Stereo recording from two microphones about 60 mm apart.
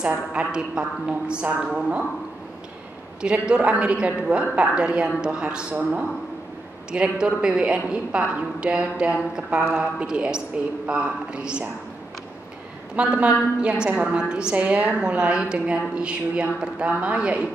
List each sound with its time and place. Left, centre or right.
0.3 s a man's voice: centre
3.2 s a man's voice: centre
6.9 s a man's voice: centre
12.9 s a woman's voice: centre